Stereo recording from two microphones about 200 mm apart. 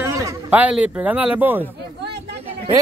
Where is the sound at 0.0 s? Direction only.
15° right (ahead or behind).